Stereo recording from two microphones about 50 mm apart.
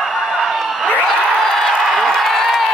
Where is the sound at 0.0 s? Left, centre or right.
Centre.